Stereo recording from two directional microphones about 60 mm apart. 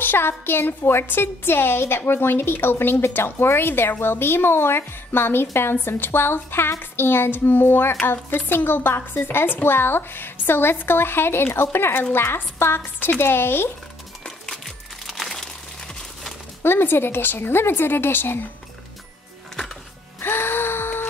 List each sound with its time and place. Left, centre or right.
0.0 s speech: left
14.2 s music: centre
15.0 s crumpling: centre
16.6 s speech: left
19.5 s music: centre
20.2 s gasp: left